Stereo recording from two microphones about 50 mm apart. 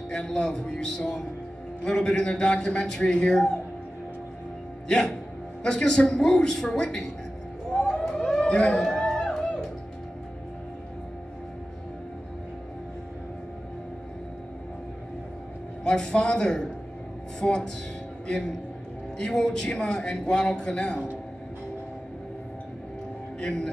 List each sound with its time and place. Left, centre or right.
0.1 s a man's voice: centre
4.8 s a man's voice: centre
7.7 s a sound: centre
8.2 s a sound: centre
15.8 s a man's voice: centre
23.4 s a man's voice: centre